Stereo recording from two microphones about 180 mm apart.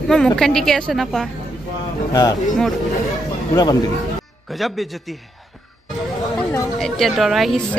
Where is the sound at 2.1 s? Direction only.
20° left (ahead or behind).